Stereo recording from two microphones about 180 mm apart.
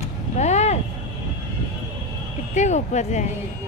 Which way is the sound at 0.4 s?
40° left (ahead or behind).